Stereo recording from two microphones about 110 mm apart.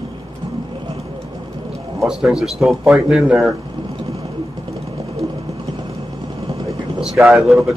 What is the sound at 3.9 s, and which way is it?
Vehicle, 65° right (ahead or behind).